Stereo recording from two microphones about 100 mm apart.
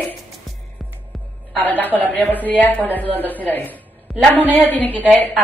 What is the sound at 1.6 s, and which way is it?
A woman's voice, 20° left (ahead or behind).